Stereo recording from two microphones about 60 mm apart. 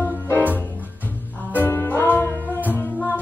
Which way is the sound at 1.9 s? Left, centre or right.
Left.